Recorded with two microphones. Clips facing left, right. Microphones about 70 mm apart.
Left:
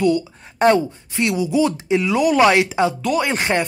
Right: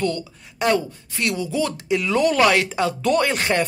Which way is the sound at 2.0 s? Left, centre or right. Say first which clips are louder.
Left 1 dB; centre.